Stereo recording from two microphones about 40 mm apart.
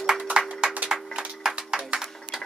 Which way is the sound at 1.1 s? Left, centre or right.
Centre.